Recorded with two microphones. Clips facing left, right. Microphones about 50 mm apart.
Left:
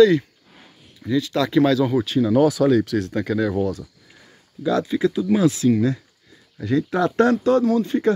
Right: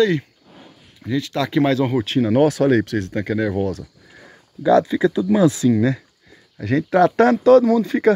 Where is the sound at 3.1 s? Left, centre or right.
Right.